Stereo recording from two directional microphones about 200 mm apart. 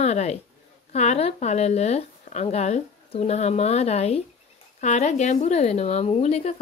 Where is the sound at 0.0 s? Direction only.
35° left (ahead or behind).